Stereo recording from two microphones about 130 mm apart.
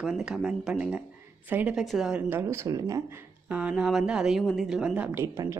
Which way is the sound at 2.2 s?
20° right (ahead or behind).